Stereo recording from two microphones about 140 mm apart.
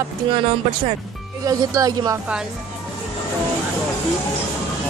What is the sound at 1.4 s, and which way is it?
Speech, 25° right (ahead or behind).